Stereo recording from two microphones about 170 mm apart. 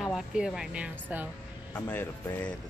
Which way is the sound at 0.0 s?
5° right (ahead or behind).